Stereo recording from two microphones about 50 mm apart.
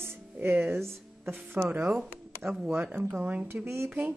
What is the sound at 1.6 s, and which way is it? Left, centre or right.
Speech, right.